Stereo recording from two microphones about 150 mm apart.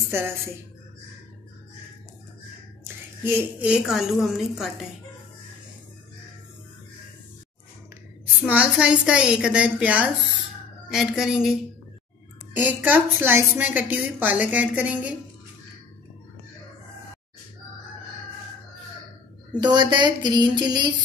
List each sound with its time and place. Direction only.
2.8 s a woman's voice: 15° right (ahead or behind)
8.4 s a woman's voice: 10° right (ahead or behind)
12.5 s a woman's voice: 10° right (ahead or behind)
19.6 s speech: 30° right (ahead or behind)